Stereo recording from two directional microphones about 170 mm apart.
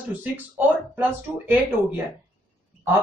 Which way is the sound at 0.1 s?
10° right (ahead or behind).